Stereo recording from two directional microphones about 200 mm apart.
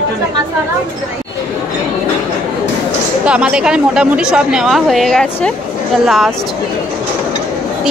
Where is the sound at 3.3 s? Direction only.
5° right (ahead or behind).